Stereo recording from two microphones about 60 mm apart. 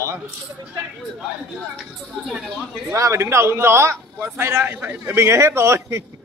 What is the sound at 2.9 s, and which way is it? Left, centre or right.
A man's voice, right.